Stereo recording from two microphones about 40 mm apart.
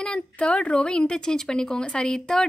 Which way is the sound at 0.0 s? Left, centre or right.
Left.